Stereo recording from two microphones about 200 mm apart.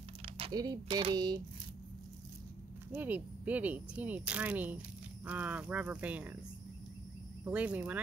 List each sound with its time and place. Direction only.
0.2 s speech: 25° right (ahead or behind)
2.9 s speech: 10° right (ahead or behind)
7.4 s speech: 5° right (ahead or behind)